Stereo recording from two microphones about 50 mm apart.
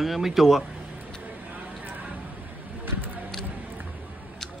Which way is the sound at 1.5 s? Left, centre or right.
Right.